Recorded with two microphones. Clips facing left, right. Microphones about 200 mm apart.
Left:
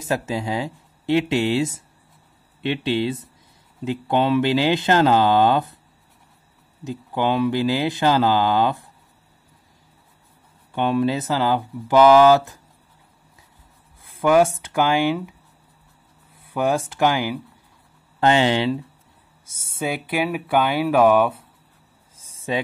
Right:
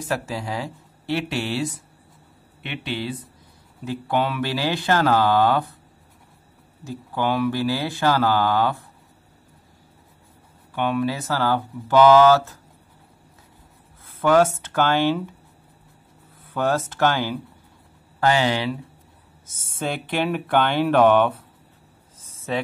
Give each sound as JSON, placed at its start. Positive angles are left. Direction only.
{"t": 0.0, "sound": "speech", "side_deg": 20}
{"t": 6.8, "sound": "speech", "side_deg": 20}
{"t": 10.7, "sound": "speech", "side_deg": 25}
{"t": 14.2, "sound": "speech", "side_deg": 10}
{"t": 16.4, "sound": "speech", "side_deg": 15}
{"t": 18.2, "sound": "speech", "side_deg": 25}
{"t": 19.4, "sound": "speech", "side_deg": 10}
{"t": 22.2, "sound": "a sound", "side_deg": 15}